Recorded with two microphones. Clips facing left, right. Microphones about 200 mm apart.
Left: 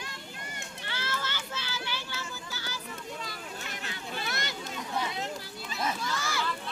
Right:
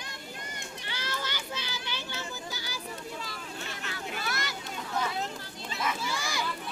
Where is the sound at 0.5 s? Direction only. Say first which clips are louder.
Even; 15° right (ahead or behind).